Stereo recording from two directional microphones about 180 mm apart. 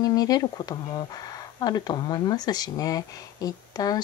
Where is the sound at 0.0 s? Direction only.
20° left (ahead or behind).